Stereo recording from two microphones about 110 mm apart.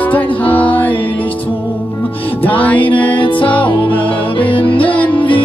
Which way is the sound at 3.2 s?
50° left (ahead or behind).